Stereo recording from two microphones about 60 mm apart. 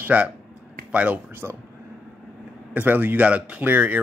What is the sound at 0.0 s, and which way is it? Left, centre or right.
Speech, right.